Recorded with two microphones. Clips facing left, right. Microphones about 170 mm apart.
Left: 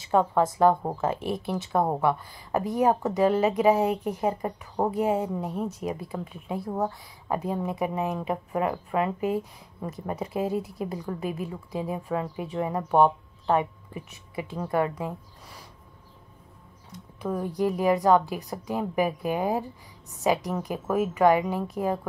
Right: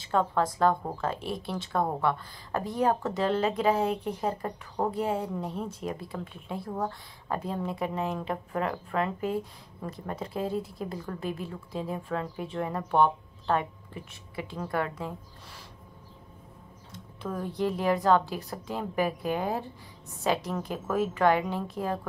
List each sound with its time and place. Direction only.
0.1 s speech: 15° left (ahead or behind)
11.7 s speech: 15° left (ahead or behind)
17.2 s speech: 10° left (ahead or behind)